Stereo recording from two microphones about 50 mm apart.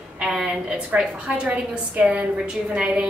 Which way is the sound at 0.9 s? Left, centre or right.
Centre.